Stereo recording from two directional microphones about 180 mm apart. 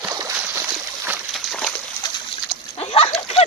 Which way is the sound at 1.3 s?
Centre (ahead or behind).